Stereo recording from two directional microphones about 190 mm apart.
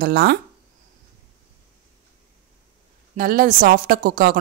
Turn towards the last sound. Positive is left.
turn(degrees=-45)  # may be behind; listen again after turning